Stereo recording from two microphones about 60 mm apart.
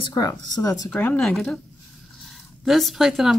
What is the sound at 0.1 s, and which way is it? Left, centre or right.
Speech, left.